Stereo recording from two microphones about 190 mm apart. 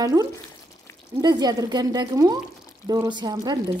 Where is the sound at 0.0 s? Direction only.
20° right (ahead or behind).